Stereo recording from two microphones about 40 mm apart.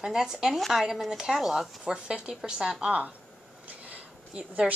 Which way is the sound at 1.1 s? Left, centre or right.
Centre.